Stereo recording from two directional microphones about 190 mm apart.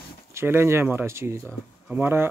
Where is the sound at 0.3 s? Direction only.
15° right (ahead or behind).